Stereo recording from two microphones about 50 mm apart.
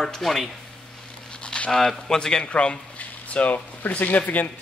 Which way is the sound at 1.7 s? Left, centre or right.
Centre.